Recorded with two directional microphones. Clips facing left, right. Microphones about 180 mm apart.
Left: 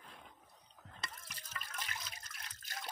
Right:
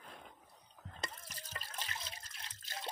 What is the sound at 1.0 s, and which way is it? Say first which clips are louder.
Water: right 3 dB; 35° right (ahead or behind).